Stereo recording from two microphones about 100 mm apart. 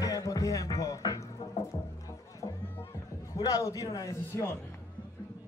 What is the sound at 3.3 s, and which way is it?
A man's voice, 35° left (ahead or behind).